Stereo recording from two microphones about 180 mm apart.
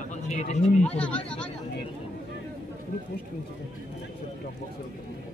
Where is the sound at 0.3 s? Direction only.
40° left (ahead or behind).